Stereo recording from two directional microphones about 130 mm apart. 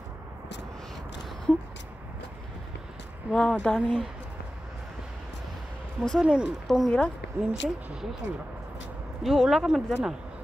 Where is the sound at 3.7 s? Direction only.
5° left (ahead or behind).